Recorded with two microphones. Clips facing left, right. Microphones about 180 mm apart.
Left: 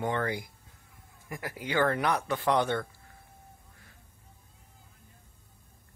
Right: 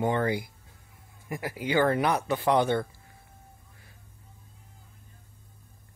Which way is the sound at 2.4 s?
5° right (ahead or behind).